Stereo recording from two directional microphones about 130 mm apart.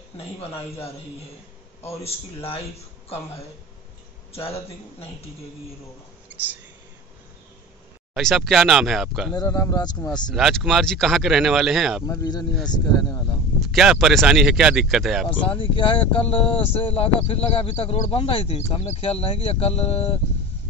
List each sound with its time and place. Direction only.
2.0 s speech: 50° left (ahead or behind)
4.3 s speech: 50° left (ahead or behind)
6.3 s whispering: 15° right (ahead or behind)
8.1 s speech: centre (ahead or behind)
9.3 s speech: 30° left (ahead or behind)
10.3 s speech: centre (ahead or behind)
12.1 s speech: 30° left (ahead or behind)
13.6 s speech: centre (ahead or behind)
15.2 s speech: 45° left (ahead or behind)